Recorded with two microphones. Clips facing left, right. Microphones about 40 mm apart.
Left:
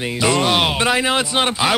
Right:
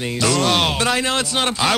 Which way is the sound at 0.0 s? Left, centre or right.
Centre.